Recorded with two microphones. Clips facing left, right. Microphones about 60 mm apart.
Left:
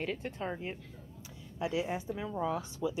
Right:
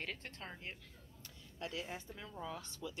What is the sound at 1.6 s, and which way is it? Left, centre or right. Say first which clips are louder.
Speech: left 11 dB; centre.